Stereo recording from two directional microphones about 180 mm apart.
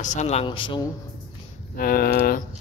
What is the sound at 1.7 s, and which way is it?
Speech, 55° left (ahead or behind).